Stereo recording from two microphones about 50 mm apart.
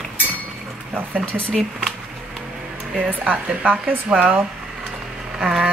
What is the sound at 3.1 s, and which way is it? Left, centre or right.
Speech, right.